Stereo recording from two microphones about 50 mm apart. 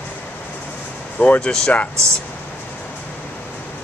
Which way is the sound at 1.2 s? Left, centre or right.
Left.